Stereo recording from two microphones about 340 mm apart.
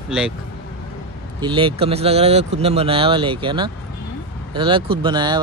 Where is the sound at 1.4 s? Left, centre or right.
Centre.